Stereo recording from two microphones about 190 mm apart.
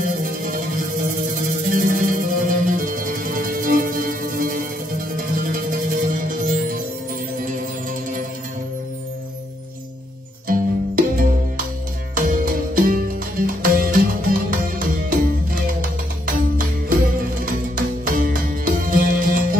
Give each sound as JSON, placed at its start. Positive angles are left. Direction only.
{"t": 0.0, "sound": "music", "side_deg": -45}
{"t": 10.5, "sound": "music", "side_deg": -45}